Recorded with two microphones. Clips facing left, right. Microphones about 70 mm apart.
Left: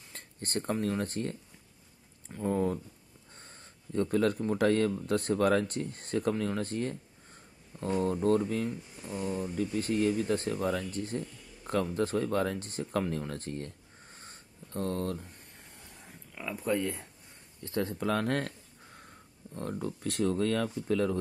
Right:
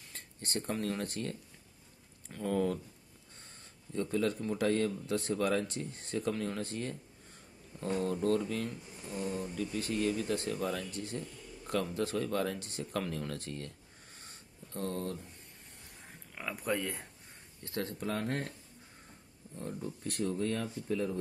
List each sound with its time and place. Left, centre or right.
0.1 s a sound: left
0.8 s speech: left
2.3 s speech: left
3.9 s a man's voice: left
13.3 s a sound: left
18.1 s speech: left
19.5 s speech: left